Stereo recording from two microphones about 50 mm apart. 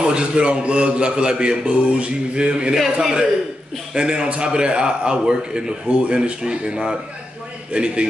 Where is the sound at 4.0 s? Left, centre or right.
Centre.